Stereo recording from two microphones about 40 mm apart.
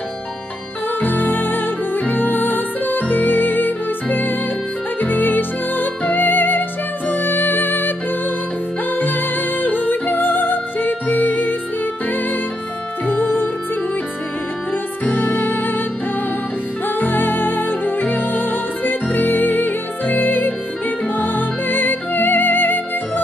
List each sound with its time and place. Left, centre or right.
1.0 s music: left
8.9 s music: left
13.0 s music: left
15.0 s music: left
17.0 s music: left